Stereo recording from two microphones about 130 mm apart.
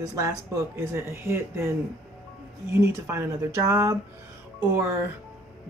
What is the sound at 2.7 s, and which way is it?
Speech, 20° right (ahead or behind).